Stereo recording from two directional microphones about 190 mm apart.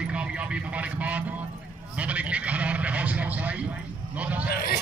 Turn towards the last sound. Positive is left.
turn(degrees=55)  # may be behind; listen again after turning